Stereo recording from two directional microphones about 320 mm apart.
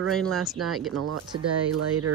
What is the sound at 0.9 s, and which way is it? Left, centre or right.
Speech, right.